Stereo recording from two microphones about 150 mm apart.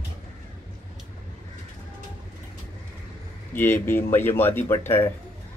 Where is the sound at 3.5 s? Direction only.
15° left (ahead or behind).